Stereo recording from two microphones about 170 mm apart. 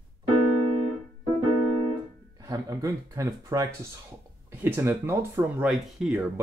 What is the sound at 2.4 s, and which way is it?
Speech, 20° right (ahead or behind).